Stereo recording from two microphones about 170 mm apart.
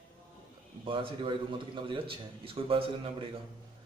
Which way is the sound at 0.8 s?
30° right (ahead or behind).